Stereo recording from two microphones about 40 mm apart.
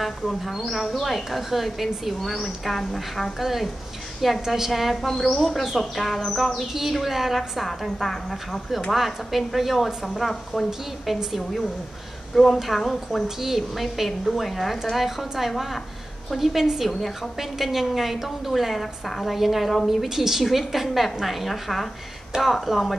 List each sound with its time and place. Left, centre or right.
0.0 s a woman's voice: centre
3.3 s a woman's voice: centre
5.0 s a woman's voice: centre
11.1 s a woman's voice: centre
12.5 s a woman's voice: centre